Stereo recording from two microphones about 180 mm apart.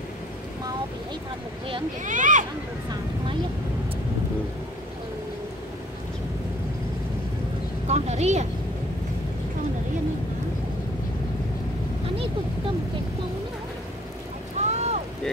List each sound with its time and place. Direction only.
2.0 s a sound: 45° right (ahead or behind)
7.8 s a woman's voice: 40° right (ahead or behind)
14.6 s boat: 40° right (ahead or behind)